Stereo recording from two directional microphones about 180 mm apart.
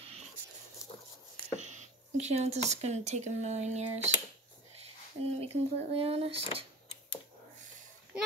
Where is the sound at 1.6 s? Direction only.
40° right (ahead or behind).